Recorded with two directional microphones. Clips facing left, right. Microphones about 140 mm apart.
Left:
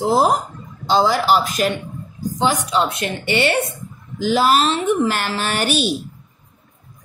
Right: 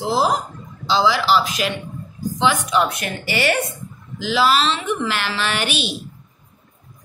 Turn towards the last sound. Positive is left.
turn(degrees=45)  # may be behind; listen again after turning